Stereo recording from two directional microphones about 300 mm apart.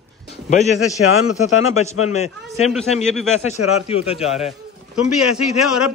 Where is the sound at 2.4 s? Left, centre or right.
Centre.